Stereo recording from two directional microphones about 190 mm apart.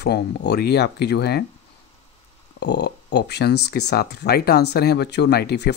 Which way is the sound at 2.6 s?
65° left (ahead or behind).